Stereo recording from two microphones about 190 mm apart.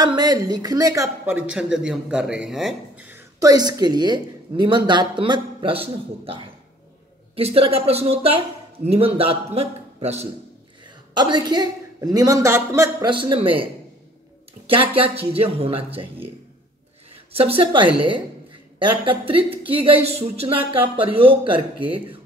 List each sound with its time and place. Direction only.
0.0 s a man's voice: 20° right (ahead or behind)
11.1 s speech: 20° right (ahead or behind)
13.1 s speech: 25° right (ahead or behind)
14.7 s speech: 30° right (ahead or behind)
17.3 s speech: 30° right (ahead or behind)